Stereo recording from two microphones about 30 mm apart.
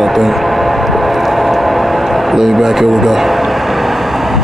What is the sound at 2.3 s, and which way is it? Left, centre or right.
Speech, centre.